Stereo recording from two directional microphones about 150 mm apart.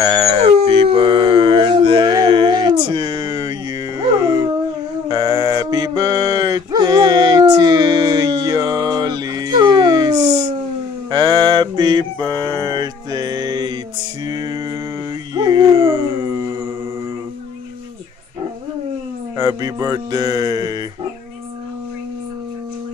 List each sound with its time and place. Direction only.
0.0 s dog: 25° right (ahead or behind)
0.3 s howl: 40° right (ahead or behind); by 4.4 s 25° right (ahead or behind)
5.0 s mantra: 30° right (ahead or behind)
14.2 s a sound: 25° right (ahead or behind)
15.3 s dog: 30° right (ahead or behind)
19.3 s music: 25° right (ahead or behind)